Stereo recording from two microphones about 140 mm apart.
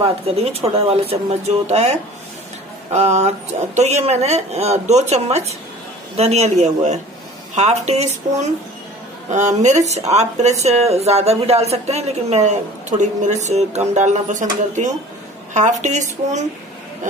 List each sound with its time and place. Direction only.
0.0 s speech: 45° right (ahead or behind)